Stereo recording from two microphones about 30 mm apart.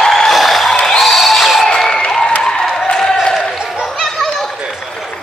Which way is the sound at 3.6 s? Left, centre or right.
Right.